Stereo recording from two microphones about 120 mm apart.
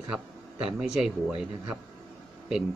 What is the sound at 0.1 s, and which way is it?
Speech, 5° right (ahead or behind).